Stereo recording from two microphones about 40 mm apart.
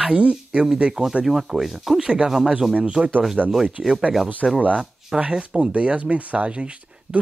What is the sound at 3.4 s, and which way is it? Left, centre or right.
Speech, right.